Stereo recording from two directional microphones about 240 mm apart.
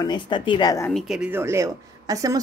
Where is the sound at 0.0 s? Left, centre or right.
Centre.